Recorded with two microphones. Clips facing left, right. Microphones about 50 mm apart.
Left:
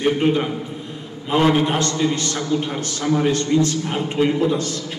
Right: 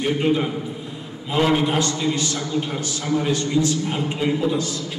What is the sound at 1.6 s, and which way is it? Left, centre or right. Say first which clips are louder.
A man's voice: left 2 dB; left.